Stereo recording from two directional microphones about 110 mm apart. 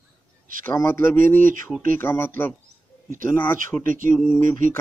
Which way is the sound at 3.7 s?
5° right (ahead or behind).